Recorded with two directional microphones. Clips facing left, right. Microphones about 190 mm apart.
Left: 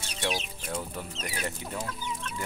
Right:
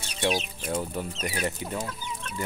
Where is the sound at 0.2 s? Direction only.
15° right (ahead or behind).